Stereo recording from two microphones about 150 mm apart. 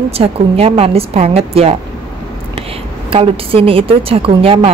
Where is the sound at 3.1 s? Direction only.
40° right (ahead or behind).